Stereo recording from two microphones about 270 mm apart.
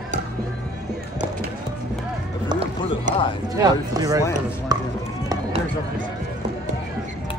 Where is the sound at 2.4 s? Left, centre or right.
Right.